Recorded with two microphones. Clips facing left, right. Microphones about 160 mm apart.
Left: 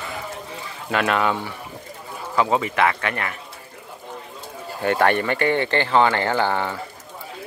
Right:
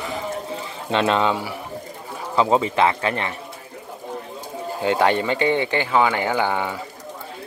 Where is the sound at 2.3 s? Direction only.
25° right (ahead or behind).